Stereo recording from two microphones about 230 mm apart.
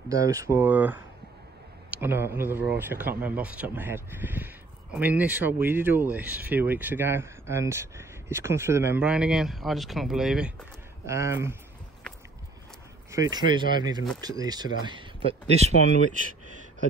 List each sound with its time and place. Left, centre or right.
0.1 s speech: centre
13.1 s speech: centre